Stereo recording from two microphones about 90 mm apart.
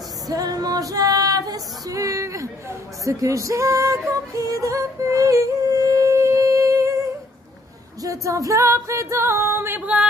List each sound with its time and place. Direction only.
0.3 s female singing: 45° right (ahead or behind)
3.1 s music: 35° right (ahead or behind)
4.4 s yodeling: 40° right (ahead or behind)
8.0 s music: 40° right (ahead or behind); by 10.0 s 15° right (ahead or behind)